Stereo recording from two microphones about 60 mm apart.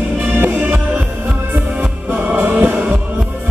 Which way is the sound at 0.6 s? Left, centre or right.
Centre.